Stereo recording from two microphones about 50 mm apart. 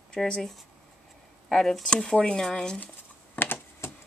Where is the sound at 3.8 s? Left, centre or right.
Left.